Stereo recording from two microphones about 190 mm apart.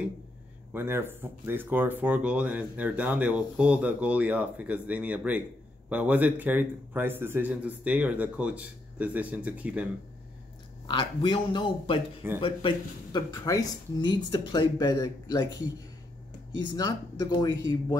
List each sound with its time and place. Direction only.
0.7 s speech: 10° right (ahead or behind)
10.9 s speech: 25° left (ahead or behind)